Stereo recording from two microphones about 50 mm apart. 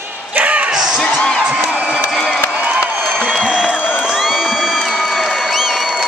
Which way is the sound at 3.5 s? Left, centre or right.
Centre.